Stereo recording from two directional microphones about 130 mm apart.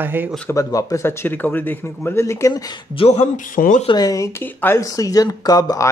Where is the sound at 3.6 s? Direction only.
85° left.